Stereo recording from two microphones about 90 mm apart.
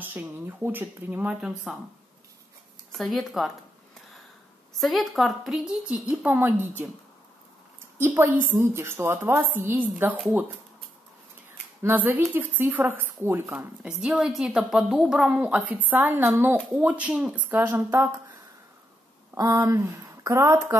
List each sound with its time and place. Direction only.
0.0 s a woman's voice: 20° right (ahead or behind)
1.7 s a woman's voice: 5° right (ahead or behind)
3.0 s a woman's voice: centre (ahead or behind)
4.7 s a woman's voice: centre (ahead or behind)
5.9 s a woman's voice: 20° right (ahead or behind)
8.0 s a woman's voice: 25° right (ahead or behind)
11.8 s a woman's voice: 20° right (ahead or behind)
13.8 s a woman's voice: 5° right (ahead or behind)
15.4 s a woman's voice: 15° right (ahead or behind)
17.1 s a woman's voice: 5° right (ahead or behind)
17.4 s a woman's voice: 20° right (ahead or behind)
19.3 s speech: 40° right (ahead or behind)